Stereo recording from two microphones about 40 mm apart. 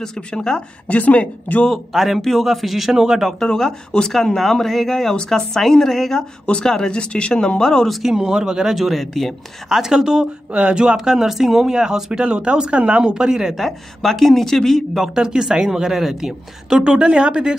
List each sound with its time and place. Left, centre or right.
0.0 s speech: centre
0.8 s a woman's voice: left
1.9 s speech: centre
3.3 s a woman's voice: centre
6.6 s speech: centre
8.0 s speech: centre
9.0 s a woman's voice: centre
9.7 s speech: centre
10.5 s speech: right
11.1 s speech: centre; by 13.1 s right
13.1 s speech: centre
13.7 s speech: centre
15.1 s speech: centre
16.6 s speech: right